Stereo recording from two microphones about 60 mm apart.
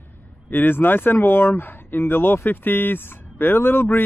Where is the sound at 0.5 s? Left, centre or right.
Left.